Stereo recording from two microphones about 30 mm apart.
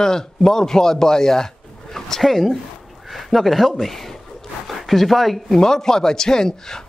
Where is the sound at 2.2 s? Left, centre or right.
Centre.